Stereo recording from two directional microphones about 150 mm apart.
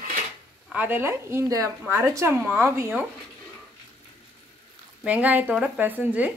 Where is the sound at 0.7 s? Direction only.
15° right (ahead or behind).